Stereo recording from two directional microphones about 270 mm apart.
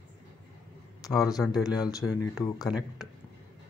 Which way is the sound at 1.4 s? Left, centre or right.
Centre.